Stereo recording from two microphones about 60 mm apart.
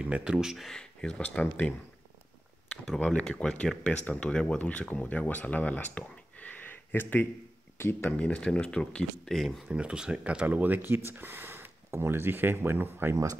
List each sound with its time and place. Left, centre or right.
0.0 s speech: centre
0.7 s speech: centre
1.2 s speech: left
3.0 s speech: centre
6.9 s speech: left
8.2 s speech: centre
9.7 s speech: centre; by 13.1 s right
13.1 s speech: right